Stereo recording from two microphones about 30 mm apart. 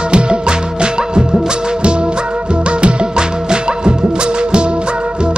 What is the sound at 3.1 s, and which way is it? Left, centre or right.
Music, right.